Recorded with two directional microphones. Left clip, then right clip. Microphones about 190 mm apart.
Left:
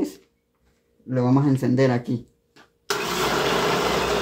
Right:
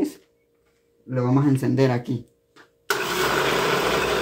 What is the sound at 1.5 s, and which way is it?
Speech, 5° right (ahead or behind).